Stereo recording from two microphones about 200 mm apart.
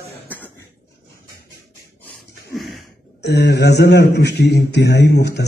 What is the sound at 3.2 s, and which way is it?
A man's voice, 55° left (ahead or behind).